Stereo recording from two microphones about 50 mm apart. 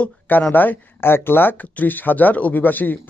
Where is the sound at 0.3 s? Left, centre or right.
Left.